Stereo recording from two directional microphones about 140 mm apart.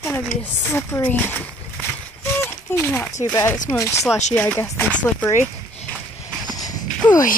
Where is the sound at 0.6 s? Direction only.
15° left (ahead or behind).